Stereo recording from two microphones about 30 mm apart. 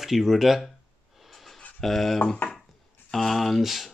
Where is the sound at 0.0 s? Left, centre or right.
Centre.